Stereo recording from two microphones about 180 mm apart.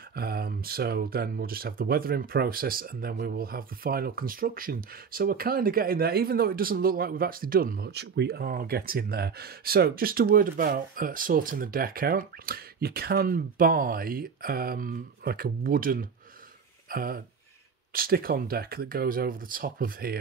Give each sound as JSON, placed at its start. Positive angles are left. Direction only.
{"t": 0.1, "sound": "speech", "side_deg": -60}